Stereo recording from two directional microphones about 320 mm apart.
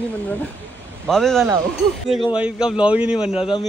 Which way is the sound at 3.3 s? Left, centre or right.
Centre.